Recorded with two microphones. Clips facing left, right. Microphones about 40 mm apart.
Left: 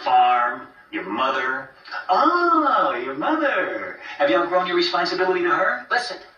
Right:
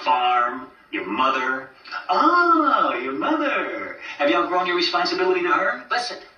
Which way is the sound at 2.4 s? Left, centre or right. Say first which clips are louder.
Even; left.